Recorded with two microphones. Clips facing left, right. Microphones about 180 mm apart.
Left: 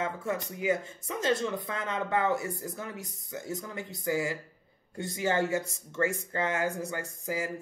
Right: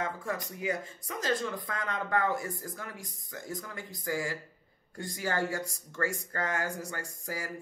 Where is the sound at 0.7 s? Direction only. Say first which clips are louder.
Left 5 dB; 25° left (ahead or behind).